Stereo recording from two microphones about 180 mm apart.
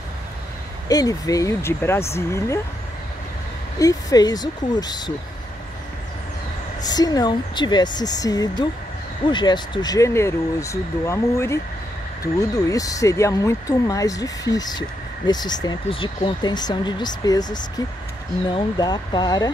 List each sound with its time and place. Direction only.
0.8 s speech: 20° left (ahead or behind)
3.8 s speech: 20° left (ahead or behind)
6.8 s speech: 20° left (ahead or behind)